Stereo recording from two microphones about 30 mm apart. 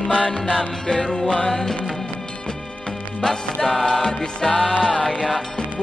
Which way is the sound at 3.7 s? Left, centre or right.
Centre.